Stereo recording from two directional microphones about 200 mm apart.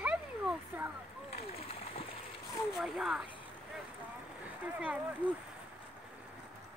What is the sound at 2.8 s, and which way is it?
Speech, centre (ahead or behind).